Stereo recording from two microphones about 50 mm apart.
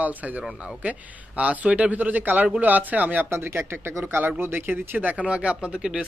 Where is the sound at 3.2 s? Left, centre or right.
Right.